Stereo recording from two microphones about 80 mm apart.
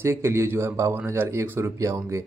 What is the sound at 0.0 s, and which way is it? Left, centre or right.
Speech, right.